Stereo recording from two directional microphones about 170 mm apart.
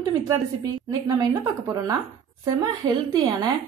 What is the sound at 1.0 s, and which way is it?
Speech, 20° right (ahead or behind).